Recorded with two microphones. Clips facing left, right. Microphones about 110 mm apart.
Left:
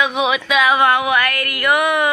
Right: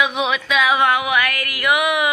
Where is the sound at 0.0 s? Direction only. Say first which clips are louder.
Left 2 dB; centre (ahead or behind).